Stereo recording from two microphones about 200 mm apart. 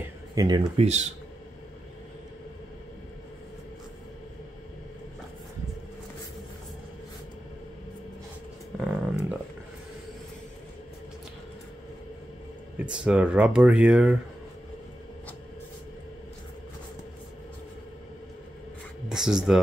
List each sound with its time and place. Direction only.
0.3 s speech: 20° right (ahead or behind)
0.7 s speech: 35° right (ahead or behind)
8.7 s a sound: 5° right (ahead or behind)
12.7 s speech: 5° right (ahead or behind)
19.0 s speech: 5° right (ahead or behind)